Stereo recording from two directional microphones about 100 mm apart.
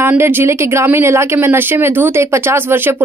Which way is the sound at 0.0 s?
20° right (ahead or behind).